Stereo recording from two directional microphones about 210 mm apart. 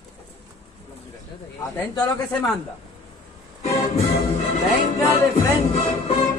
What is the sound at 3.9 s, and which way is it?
Music, 30° left (ahead or behind).